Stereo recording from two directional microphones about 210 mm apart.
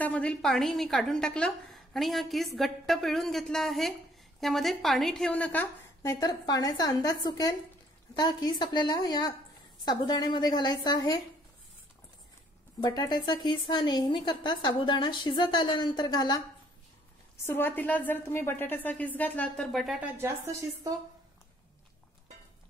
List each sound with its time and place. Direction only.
0.0 s a woman's voice: 5° left (ahead or behind)
12.8 s a woman's voice: 20° left (ahead or behind)
17.5 s a woman's voice: 10° left (ahead or behind); by 20.3 s 10° right (ahead or behind)